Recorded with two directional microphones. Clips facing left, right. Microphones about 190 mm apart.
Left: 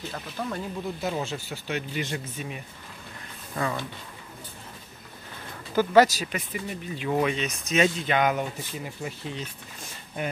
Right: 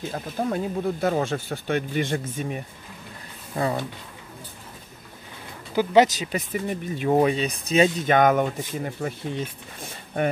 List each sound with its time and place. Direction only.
0.1 s speech: 45° right (ahead or behind)
3.6 s speech: 25° right (ahead or behind)
5.8 s speech: 20° right (ahead or behind)
6.3 s speech: 45° right (ahead or behind)
8.0 s speech: 45° right (ahead or behind)